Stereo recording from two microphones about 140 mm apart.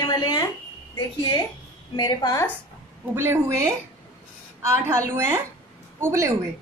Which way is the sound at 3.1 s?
20° right (ahead or behind).